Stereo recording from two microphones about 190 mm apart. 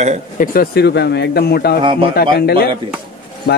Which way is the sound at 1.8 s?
25° right (ahead or behind).